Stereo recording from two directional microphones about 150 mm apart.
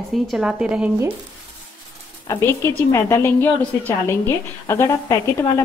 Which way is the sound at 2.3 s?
15° left (ahead or behind).